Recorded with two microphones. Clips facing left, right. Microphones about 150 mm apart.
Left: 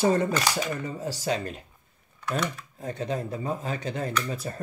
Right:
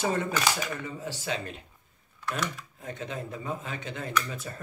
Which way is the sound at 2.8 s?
35° left (ahead or behind).